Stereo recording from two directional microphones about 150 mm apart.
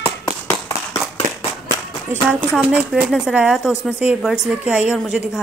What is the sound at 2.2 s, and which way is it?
Speech, 5° right (ahead or behind).